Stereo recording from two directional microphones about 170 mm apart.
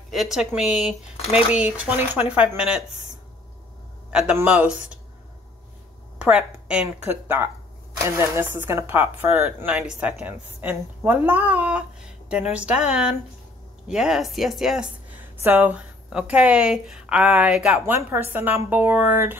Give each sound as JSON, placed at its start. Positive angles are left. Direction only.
{"t": 0.1, "sound": "speech", "side_deg": 0}
{"t": 1.1, "sound": "speech", "side_deg": 35}
{"t": 1.5, "sound": "a woman's voice", "side_deg": -5}
{"t": 4.1, "sound": "speech", "side_deg": -5}
{"t": 6.1, "sound": "a woman's voice", "side_deg": -5}